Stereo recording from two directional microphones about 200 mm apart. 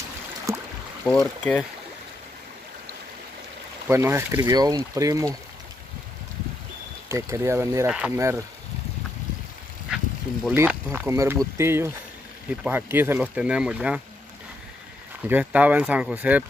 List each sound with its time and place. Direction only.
0.5 s a sound: 15° right (ahead or behind)
1.0 s speech: 10° left (ahead or behind)
3.9 s speech: 10° right (ahead or behind)
7.1 s speech: 15° right (ahead or behind)
10.5 s speech: 10° right (ahead or behind)
15.2 s speech: 10° right (ahead or behind)